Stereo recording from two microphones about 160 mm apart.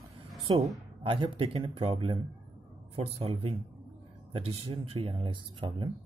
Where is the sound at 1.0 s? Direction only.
35° right (ahead or behind).